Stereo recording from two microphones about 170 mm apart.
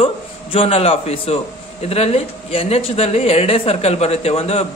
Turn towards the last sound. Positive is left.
turn(degrees=35)  # may be behind; listen again after turning